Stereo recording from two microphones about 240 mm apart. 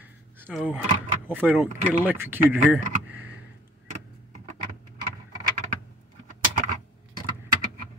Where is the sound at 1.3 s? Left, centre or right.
Centre.